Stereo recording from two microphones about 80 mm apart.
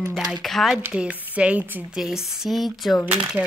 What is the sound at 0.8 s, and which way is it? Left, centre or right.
Speech, centre.